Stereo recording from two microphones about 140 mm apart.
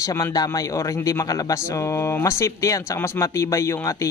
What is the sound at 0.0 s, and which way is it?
A man's voice, 25° left (ahead or behind).